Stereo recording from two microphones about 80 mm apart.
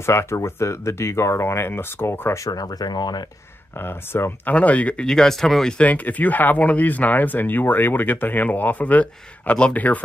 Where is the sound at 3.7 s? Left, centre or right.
Left.